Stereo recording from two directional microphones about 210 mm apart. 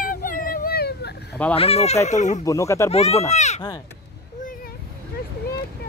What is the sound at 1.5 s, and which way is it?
Speech, 30° left (ahead or behind).